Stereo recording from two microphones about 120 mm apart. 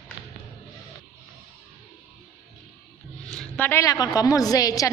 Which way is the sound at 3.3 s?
5° left (ahead or behind).